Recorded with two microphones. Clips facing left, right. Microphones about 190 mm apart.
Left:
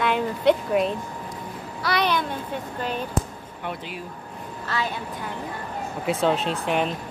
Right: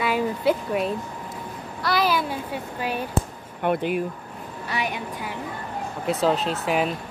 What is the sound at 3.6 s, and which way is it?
Speech, 55° right (ahead or behind).